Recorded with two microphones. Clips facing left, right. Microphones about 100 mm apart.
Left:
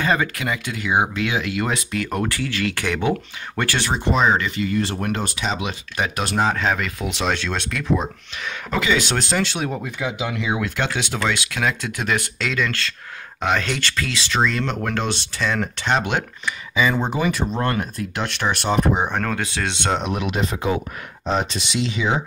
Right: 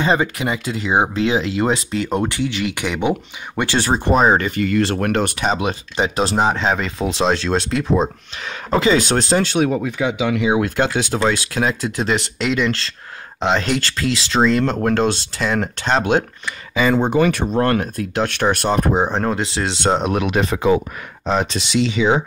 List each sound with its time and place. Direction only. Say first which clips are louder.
0.0 s speech: right 3 dB; 25° right (ahead or behind)
3.7 s speech: right 5 dB; 40° right (ahead or behind); by 5.5 s 55° right (ahead or behind)
5.5 s speech: right 4 dB; 40° right (ahead or behind)
5.9 s speech: right 4 dB; 25° right (ahead or behind)
9.7 s speech: right 6 dB; 90° right
10.6 s speech: right 5 dB; 40° right (ahead or behind)
16.7 s speech: right 5 dB; 55° right (ahead or behind)
18.9 s speech: right 4 dB; 25° right (ahead or behind)
19.8 s speech: right 6 dB; 35° right (ahead or behind)
20.2 s speech: right 5 dB; 75° right (ahead or behind); by 22.1 s 90° right